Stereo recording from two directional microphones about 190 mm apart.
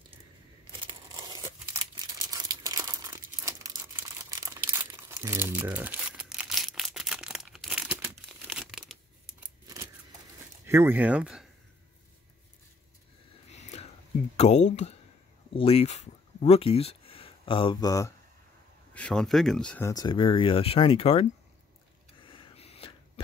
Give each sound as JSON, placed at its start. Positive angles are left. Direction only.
{"t": 0.7, "sound": "tearing", "side_deg": -25}
{"t": 1.8, "sound": "crumpling", "side_deg": -20}
{"t": 10.7, "sound": "speech", "side_deg": -10}
{"t": 13.5, "sound": "whispering", "side_deg": 35}
{"t": 14.3, "sound": "speech", "side_deg": 35}
{"t": 18.9, "sound": "speech", "side_deg": 5}
{"t": 19.9, "sound": "speech", "side_deg": 20}
{"t": 22.2, "sound": "a sound", "side_deg": 25}